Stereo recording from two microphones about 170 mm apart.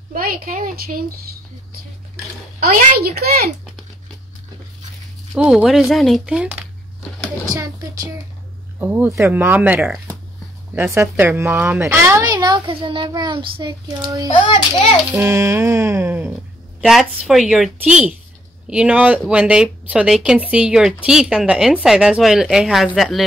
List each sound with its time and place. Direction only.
0.1 s speech: 55° right (ahead or behind)
2.6 s a woman's voice: 60° right (ahead or behind)
5.3 s a woman's voice: 5° right (ahead or behind)
7.5 s a child's voice: 20° right (ahead or behind)
12.4 s a child's voice: 25° right (ahead or behind)
14.2 s a child's voice: 30° left (ahead or behind)
15.1 s a woman's voice: 15° right (ahead or behind)